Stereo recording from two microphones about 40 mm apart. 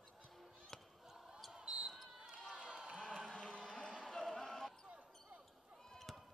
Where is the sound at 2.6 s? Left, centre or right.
Right.